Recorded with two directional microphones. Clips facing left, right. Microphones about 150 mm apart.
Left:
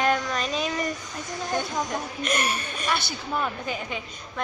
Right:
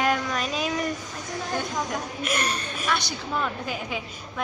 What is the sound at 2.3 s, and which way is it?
A woman's voice, 5° right (ahead or behind).